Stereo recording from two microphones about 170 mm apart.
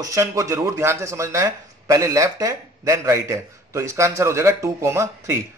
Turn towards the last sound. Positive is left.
turn(degrees=-15)  # may be behind; listen again after turning